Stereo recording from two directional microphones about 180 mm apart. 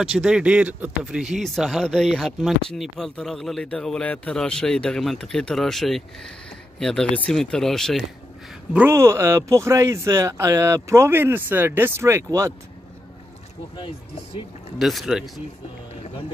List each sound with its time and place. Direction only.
0.0 s speech: 5° right (ahead or behind)
8.7 s speech: 15° right (ahead or behind)
13.7 s speech: 30° left (ahead or behind)
14.8 s speech: centre (ahead or behind)